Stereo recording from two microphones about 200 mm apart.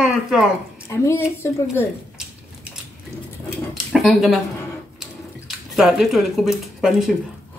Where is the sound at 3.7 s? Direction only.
Centre (ahead or behind).